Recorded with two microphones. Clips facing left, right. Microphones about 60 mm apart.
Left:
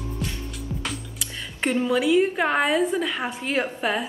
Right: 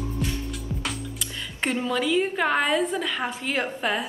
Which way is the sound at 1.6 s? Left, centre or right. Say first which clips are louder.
Left 3 dB; centre.